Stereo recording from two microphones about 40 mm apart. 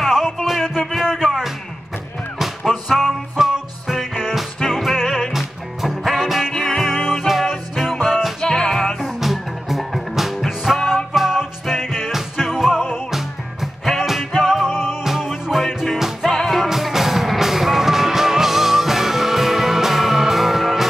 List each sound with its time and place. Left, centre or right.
0.0 s music: centre
2.9 s music: centre
4.6 s music: centre
6.6 s music: centre
8.4 s music: centre
9.0 s music: centre